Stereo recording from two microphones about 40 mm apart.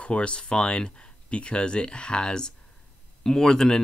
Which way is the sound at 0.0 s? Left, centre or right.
Left.